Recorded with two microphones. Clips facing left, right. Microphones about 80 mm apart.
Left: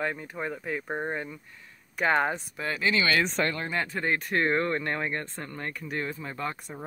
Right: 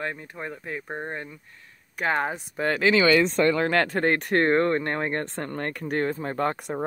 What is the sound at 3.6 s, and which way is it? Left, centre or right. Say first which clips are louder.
Speech: right 8 dB; right.